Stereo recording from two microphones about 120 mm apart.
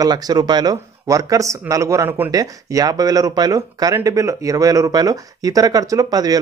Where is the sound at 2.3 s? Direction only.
30° right (ahead or behind).